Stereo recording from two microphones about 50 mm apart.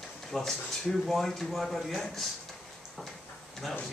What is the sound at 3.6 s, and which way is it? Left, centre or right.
Speech, centre.